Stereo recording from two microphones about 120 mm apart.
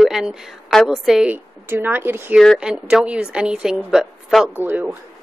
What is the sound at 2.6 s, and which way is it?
Speech, 5° right (ahead or behind).